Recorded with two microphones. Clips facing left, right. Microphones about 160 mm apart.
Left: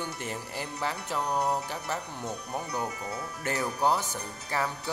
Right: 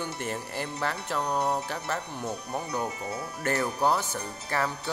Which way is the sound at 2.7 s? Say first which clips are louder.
Right 2 dB; 25° right (ahead or behind).